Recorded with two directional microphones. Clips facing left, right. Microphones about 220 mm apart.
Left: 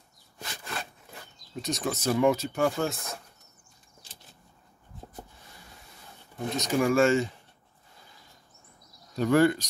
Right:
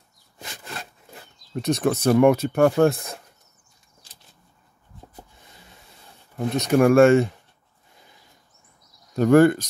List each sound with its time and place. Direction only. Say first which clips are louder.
1.5 s speech: right 9 dB; 60° right (ahead or behind)
6.5 s speech: right 8 dB; 55° right (ahead or behind)
9.1 s speech: right 7 dB; 50° right (ahead or behind)